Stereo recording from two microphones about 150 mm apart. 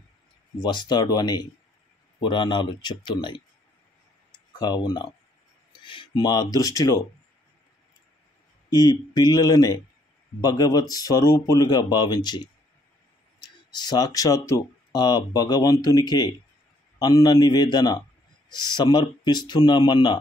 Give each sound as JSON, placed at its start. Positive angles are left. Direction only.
{"t": 0.6, "sound": "speech", "side_deg": 30}
{"t": 4.6, "sound": "speech", "side_deg": 30}
{"t": 8.6, "sound": "speech", "side_deg": 25}